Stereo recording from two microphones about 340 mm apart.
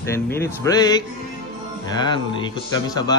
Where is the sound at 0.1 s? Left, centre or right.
Centre.